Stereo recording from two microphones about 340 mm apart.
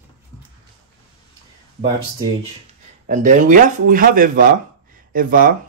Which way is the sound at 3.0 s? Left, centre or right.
Right.